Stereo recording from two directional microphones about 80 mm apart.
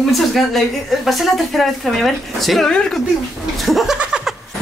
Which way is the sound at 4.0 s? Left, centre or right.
Centre.